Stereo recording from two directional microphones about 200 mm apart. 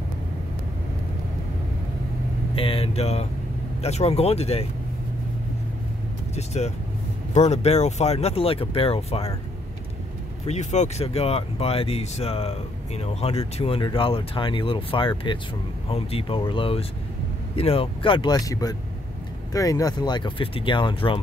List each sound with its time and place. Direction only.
2.5 s speech: 25° left (ahead or behind)
6.3 s speech: 35° left (ahead or behind)
10.4 s speech: 35° left (ahead or behind)